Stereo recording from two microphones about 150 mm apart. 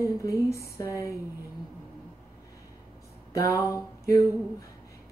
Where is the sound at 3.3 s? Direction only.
20° left (ahead or behind).